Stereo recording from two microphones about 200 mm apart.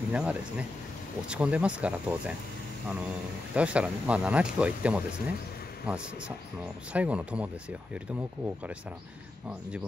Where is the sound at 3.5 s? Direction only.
5° right (ahead or behind).